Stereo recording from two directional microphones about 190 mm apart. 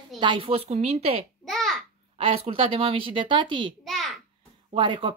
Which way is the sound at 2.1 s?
30° right (ahead or behind).